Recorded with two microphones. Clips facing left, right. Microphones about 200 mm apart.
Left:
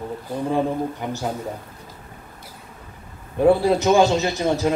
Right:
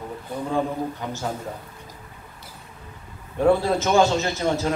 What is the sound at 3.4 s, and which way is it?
A man's voice, 15° left (ahead or behind).